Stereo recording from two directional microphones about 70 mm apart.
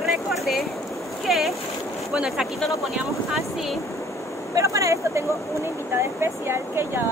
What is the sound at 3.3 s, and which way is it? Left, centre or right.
Speech, centre.